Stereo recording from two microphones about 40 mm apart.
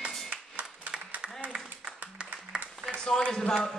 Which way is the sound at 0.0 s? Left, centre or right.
Right.